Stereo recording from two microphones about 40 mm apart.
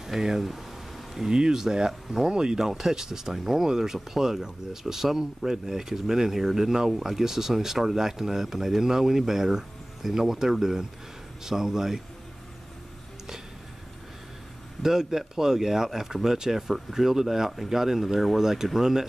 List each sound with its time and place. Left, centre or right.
0.0 s a sound: centre
1.3 s speech: centre
14.8 s speech: centre